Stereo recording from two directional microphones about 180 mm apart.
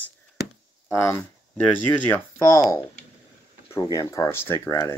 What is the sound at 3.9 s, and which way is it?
Speech, 15° left (ahead or behind).